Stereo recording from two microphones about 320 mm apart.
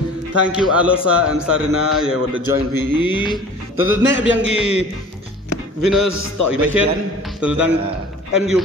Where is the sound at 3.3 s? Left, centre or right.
Centre.